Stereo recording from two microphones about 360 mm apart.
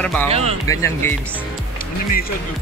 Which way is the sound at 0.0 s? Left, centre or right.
Centre.